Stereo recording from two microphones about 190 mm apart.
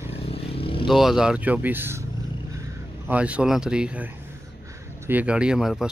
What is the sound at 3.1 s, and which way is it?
Speech, 5° right (ahead or behind).